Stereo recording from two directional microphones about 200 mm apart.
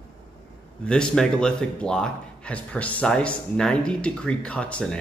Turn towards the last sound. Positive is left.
turn(degrees=5)  # may be behind; listen again after turning